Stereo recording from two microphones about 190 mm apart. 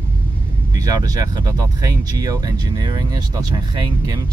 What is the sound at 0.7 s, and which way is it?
Speech, 20° right (ahead or behind).